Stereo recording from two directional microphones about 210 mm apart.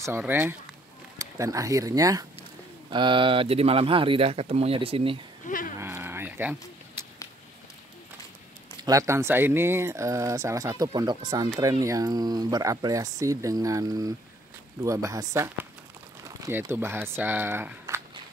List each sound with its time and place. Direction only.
0.0 s speech: 10° right (ahead or behind); by 5.2 s 25° right (ahead or behind)
5.5 s livestock: 40° left (ahead or behind)
5.8 s a sound: 10° right (ahead or behind)
8.8 s speech: 15° right (ahead or behind)